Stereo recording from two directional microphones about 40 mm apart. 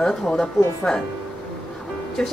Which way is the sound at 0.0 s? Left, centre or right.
Centre.